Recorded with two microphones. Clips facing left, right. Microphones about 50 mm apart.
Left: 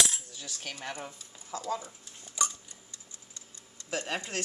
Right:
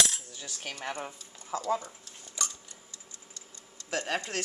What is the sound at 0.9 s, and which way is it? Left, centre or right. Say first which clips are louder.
Speech: right 3 dB; right.